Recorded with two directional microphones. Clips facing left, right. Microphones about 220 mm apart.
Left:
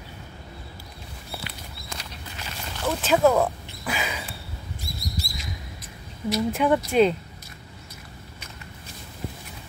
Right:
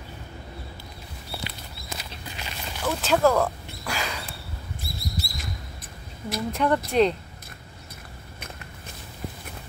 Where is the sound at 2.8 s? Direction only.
5° left (ahead or behind).